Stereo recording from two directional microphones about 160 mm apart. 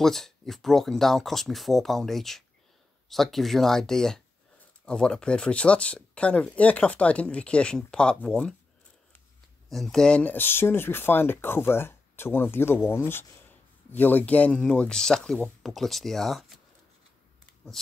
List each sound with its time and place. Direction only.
0.0 s speech: centre (ahead or behind)
9.7 s speech: centre (ahead or behind)